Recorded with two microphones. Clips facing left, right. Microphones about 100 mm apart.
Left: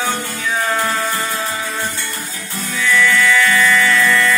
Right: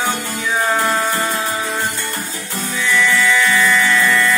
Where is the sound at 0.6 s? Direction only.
15° right (ahead or behind).